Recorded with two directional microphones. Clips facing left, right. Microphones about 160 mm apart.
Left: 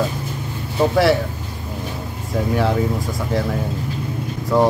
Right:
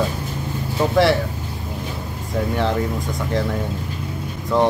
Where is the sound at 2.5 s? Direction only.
Centre (ahead or behind).